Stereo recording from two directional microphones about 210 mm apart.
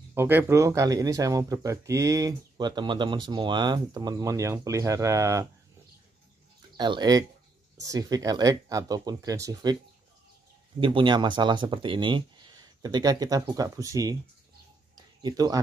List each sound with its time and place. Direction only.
0.1 s speech: 10° right (ahead or behind)
6.8 s speech: 20° right (ahead or behind)
10.8 s speech: 25° right (ahead or behind)
15.2 s speech: 20° right (ahead or behind)